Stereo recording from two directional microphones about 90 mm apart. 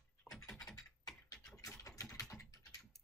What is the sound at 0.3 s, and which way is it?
Computer keyboard, 10° left (ahead or behind).